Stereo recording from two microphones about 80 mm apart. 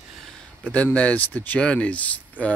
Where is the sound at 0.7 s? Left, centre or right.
Centre.